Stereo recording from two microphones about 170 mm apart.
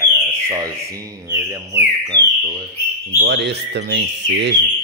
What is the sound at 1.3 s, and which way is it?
Speech, 15° right (ahead or behind).